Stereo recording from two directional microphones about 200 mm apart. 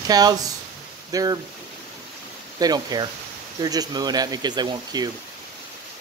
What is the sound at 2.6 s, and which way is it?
Speech, 20° right (ahead or behind).